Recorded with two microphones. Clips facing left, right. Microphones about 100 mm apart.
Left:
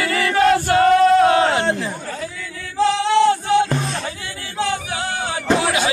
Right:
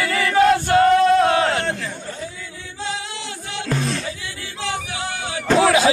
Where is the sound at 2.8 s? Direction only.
80° left; by 3.6 s 55° left (ahead or behind).